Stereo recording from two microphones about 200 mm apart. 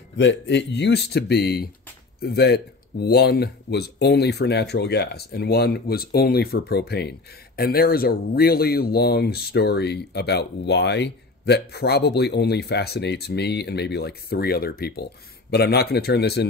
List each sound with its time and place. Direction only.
0.2 s speech: 60° left (ahead or behind)